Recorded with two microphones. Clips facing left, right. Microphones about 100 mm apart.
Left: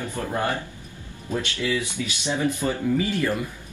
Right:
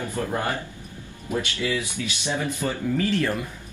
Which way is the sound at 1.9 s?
15° left (ahead or behind).